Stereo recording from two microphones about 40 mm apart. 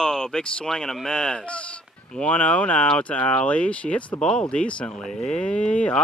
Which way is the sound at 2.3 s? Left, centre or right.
Left.